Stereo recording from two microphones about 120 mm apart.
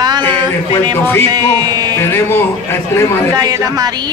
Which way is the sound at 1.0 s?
15° left (ahead or behind).